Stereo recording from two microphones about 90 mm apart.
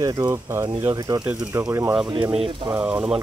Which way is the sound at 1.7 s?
35° right (ahead or behind).